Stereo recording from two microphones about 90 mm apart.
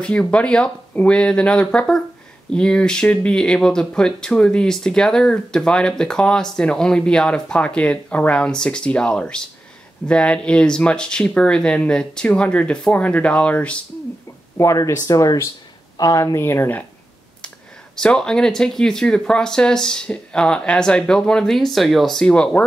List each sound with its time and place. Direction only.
0.0 s speech: 15° left (ahead or behind)
14.6 s speech: 35° left (ahead or behind)
16.4 s speech: 25° left (ahead or behind)
17.9 s speech: 10° left (ahead or behind)